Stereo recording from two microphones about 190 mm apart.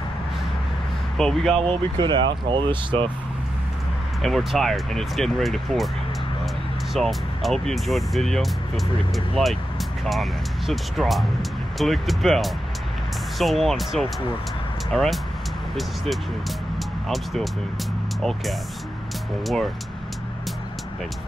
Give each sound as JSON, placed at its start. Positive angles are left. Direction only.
{"t": 1.1, "sound": "speech", "side_deg": 0}
{"t": 2.0, "sound": "speech", "side_deg": -25}
{"t": 4.2, "sound": "speech", "side_deg": 0}
{"t": 17.1, "sound": "speech", "side_deg": 0}